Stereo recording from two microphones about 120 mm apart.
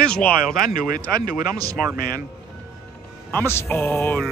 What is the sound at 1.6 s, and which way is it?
Speech, 30° right (ahead or behind).